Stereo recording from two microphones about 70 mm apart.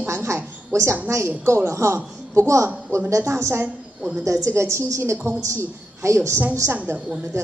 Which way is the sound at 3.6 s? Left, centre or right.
Centre.